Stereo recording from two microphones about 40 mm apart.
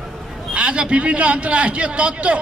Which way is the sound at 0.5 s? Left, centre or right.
Right.